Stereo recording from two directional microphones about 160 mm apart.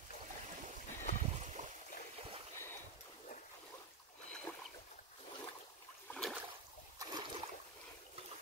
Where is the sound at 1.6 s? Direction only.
50° right (ahead or behind).